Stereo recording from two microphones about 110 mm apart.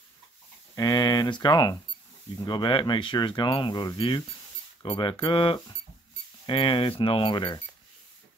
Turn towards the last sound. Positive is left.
turn(degrees=45)  # may be behind; listen again after turning